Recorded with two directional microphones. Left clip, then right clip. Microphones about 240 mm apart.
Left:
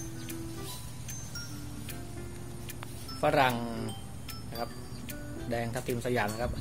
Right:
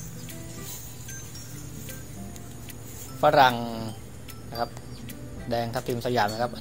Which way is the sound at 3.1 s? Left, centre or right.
Centre.